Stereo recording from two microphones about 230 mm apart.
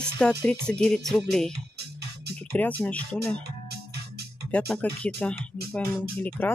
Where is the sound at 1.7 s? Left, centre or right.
Right.